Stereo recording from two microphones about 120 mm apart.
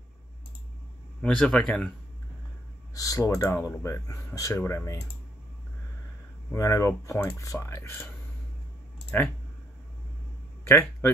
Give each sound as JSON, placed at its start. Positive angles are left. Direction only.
{"t": 1.2, "sound": "speech", "side_deg": 10}
{"t": 2.9, "sound": "speech", "side_deg": 30}
{"t": 6.5, "sound": "speech", "side_deg": 25}
{"t": 9.1, "sound": "speech", "side_deg": 15}
{"t": 10.6, "sound": "a sound", "side_deg": 20}